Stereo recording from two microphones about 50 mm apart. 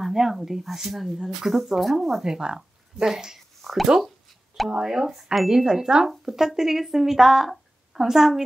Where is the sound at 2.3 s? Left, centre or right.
Centre.